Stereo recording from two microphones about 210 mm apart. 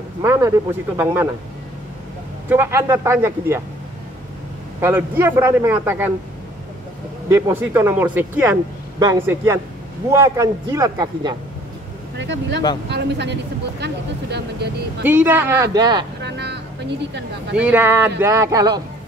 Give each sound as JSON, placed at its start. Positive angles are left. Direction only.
{"t": 0.2, "sound": "a man's voice", "side_deg": -15}
{"t": 2.5, "sound": "a man's voice", "side_deg": -10}
{"t": 4.7, "sound": "a man's voice", "side_deg": -10}
{"t": 7.2, "sound": "a man's voice", "side_deg": -15}
{"t": 12.2, "sound": "speech", "side_deg": -55}
{"t": 15.0, "sound": "a man's voice", "side_deg": -10}
{"t": 16.2, "sound": "music", "side_deg": -55}
{"t": 17.6, "sound": "a man's voice", "side_deg": -10}